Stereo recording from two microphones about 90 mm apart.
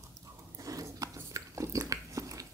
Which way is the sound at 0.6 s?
40° right (ahead or behind).